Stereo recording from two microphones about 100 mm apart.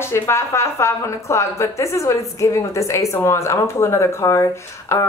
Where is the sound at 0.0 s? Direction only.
25° left (ahead or behind).